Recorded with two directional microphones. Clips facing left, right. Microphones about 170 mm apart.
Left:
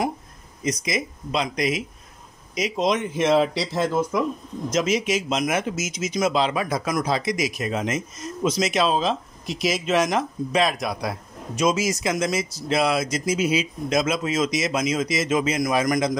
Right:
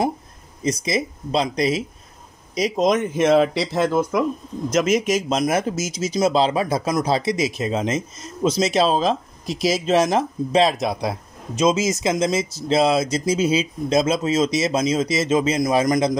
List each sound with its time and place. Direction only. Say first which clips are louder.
0.7 s speech: right 4 dB; 30° right (ahead or behind); by 4.2 s 65° right (ahead or behind)
4.6 s speech: right 4 dB; 50° right (ahead or behind); by 16.1 s 30° right (ahead or behind)